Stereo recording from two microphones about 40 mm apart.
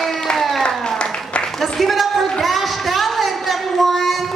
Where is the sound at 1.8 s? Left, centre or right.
Centre.